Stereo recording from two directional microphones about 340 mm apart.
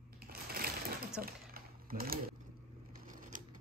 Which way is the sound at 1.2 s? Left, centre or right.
Right.